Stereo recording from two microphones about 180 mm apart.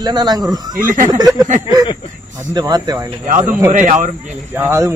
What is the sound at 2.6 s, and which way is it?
Speech, 20° right (ahead or behind).